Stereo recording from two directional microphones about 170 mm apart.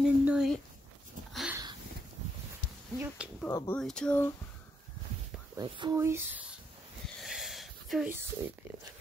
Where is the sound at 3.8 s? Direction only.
5° left (ahead or behind).